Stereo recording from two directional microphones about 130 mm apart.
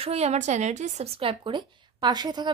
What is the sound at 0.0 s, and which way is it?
Speech, 55° right (ahead or behind).